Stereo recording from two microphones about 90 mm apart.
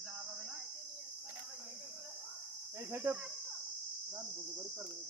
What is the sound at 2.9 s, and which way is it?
Cricket, 20° right (ahead or behind).